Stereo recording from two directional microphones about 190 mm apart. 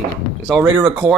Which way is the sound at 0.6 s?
5° right (ahead or behind).